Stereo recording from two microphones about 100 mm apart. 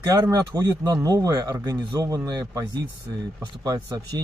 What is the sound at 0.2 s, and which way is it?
Speech, 35° right (ahead or behind).